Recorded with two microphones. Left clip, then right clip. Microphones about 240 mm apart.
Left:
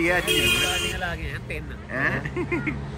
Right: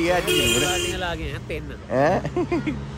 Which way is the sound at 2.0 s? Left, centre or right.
Centre.